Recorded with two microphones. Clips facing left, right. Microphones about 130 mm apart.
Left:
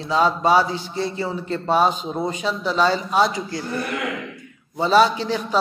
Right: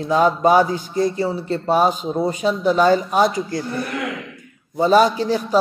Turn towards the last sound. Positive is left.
turn(degrees=-40)  # may be behind; listen again after turning